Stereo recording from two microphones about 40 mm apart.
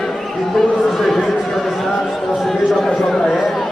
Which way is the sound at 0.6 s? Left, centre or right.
Centre.